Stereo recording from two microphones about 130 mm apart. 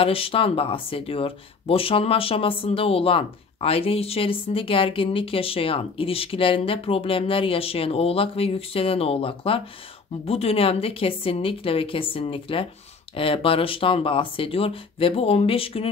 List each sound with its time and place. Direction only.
0.0 s speech: 45° left (ahead or behind)